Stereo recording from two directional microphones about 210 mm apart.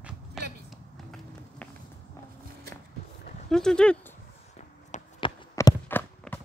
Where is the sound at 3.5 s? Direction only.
5° left (ahead or behind).